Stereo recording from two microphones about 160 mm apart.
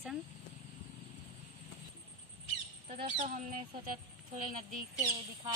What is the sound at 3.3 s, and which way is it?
Speech, 55° right (ahead or behind).